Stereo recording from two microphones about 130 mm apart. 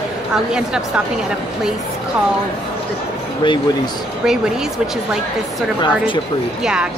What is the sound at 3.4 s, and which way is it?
Speech, 40° left (ahead or behind).